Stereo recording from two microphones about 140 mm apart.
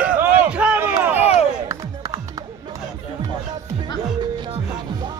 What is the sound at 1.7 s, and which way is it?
Music, 25° right (ahead or behind).